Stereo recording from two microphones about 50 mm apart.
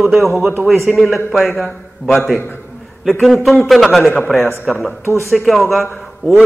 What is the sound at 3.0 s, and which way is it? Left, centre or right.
A man's voice, centre.